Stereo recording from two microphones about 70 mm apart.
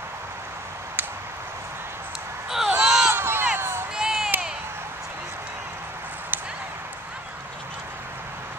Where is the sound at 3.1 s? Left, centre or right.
Right.